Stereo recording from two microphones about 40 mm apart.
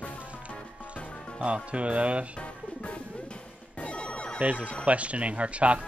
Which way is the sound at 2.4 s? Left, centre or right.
Left.